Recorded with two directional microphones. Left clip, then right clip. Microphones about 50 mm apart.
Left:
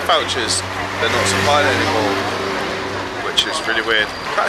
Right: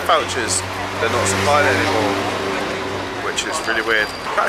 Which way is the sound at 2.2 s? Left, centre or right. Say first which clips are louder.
Left 1 dB; right.